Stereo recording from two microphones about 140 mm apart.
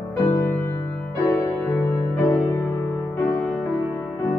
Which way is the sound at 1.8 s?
20° left (ahead or behind).